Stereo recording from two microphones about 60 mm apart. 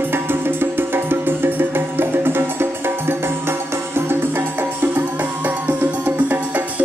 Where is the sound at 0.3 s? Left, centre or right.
Right.